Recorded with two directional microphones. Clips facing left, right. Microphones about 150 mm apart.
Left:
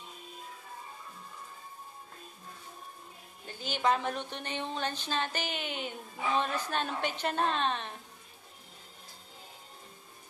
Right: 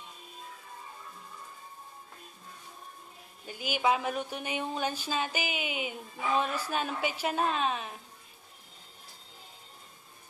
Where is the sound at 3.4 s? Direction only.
10° right (ahead or behind).